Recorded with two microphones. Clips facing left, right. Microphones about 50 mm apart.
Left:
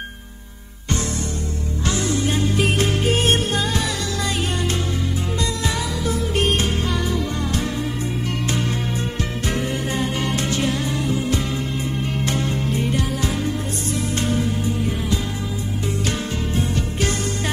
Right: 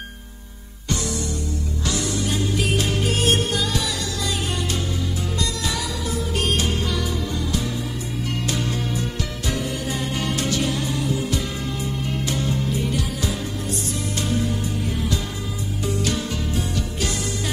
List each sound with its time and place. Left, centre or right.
1.9 s music: left
6.0 s music: left
8.5 s music: left
12.3 s music: left
16.0 s music: left